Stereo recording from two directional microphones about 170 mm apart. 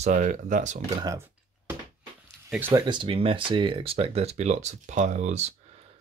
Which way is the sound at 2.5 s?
10° right (ahead or behind).